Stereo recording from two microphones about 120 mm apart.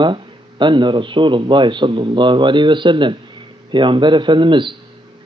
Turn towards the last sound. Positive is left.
turn(degrees=-45)  # may be behind; listen again after turning